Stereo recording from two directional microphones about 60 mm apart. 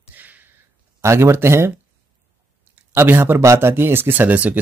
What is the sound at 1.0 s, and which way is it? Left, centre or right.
Speech, right.